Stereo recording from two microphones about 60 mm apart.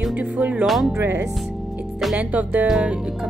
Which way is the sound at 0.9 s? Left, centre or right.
Right.